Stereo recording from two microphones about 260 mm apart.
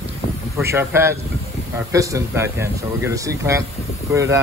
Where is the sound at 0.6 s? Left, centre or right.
Centre.